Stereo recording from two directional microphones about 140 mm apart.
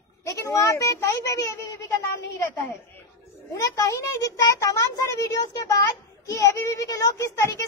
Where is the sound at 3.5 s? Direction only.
25° left (ahead or behind).